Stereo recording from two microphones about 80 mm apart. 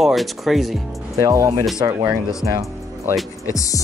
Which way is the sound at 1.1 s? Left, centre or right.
Right.